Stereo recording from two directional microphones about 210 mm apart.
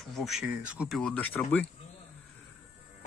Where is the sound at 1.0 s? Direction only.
5° left (ahead or behind).